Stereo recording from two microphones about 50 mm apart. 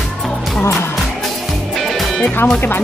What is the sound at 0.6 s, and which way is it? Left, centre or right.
Music, left.